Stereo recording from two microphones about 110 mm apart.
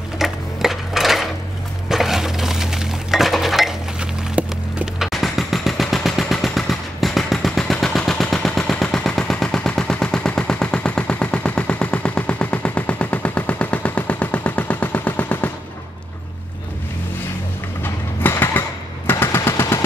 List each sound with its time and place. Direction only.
0.2 s sewing machine: 5° right (ahead or behind)
1.9 s dishes: 5° right (ahead or behind); by 15.5 s 15° left (ahead or behind)
17.8 s train: 20° left (ahead or behind)
19.0 s machine gun: 20° left (ahead or behind)